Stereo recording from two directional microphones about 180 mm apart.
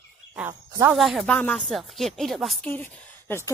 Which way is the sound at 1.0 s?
Centre (ahead or behind).